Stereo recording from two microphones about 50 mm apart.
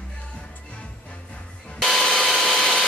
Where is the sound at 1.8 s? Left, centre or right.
Centre.